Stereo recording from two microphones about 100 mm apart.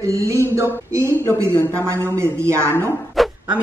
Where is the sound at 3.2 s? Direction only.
Centre (ahead or behind).